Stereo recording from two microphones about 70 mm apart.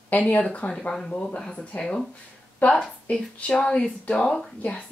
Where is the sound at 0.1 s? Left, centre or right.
Left.